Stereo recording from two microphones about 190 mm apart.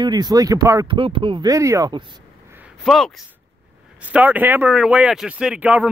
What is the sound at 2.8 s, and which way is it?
Speech, centre (ahead or behind).